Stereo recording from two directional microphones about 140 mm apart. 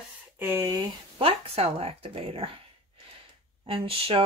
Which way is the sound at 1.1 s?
45° right (ahead or behind).